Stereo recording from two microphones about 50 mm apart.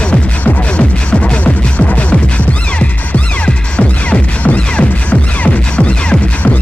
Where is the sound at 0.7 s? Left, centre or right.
Left.